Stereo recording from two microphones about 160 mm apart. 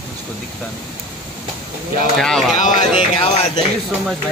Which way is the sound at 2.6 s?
50° left (ahead or behind).